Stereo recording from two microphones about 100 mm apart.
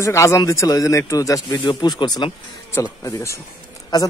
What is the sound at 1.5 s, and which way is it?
Speech, 50° left (ahead or behind).